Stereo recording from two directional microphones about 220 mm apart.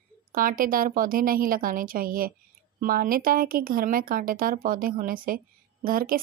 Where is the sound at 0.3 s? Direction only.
40° right (ahead or behind).